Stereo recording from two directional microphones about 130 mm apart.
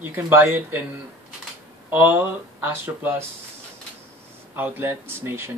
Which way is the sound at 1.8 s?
15° right (ahead or behind).